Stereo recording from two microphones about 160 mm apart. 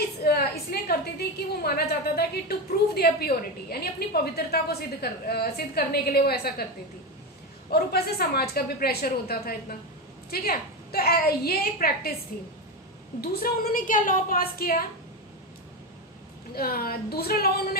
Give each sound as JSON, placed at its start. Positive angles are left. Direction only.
{"t": 0.2, "sound": "a sound", "side_deg": 80}
{"t": 1.5, "sound": "a woman's voice", "side_deg": 75}
{"t": 7.7, "sound": "a woman's voice", "side_deg": 75}
{"t": 13.2, "sound": "a woman's voice", "side_deg": 70}
{"t": 16.5, "sound": "a woman's voice", "side_deg": 70}